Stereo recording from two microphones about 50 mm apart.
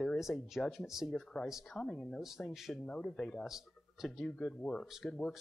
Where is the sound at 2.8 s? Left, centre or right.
Centre.